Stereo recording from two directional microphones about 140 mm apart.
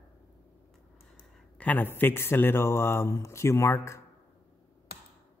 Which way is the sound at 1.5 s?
10° left (ahead or behind).